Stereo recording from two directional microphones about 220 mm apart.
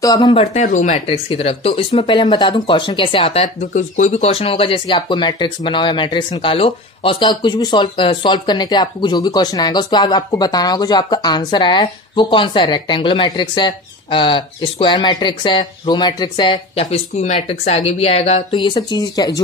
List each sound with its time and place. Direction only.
0.0 s speech: 20° left (ahead or behind)
16.8 s speech: 30° left (ahead or behind); by 19.4 s 15° left (ahead or behind)